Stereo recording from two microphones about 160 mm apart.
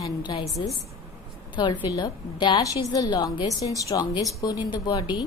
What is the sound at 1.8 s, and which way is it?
A woman's voice, 25° left (ahead or behind).